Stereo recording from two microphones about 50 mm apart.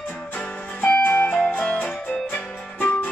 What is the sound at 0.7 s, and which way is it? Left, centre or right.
Music, left.